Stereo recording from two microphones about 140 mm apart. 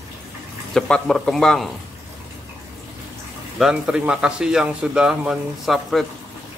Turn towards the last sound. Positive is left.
turn(degrees=0)  # may be behind; listen again after turning